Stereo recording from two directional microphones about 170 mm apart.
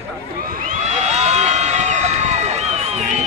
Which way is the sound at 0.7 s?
40° right (ahead or behind).